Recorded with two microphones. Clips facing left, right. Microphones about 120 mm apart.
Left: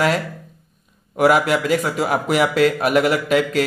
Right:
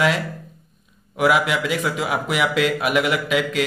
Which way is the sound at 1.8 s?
40° left (ahead or behind).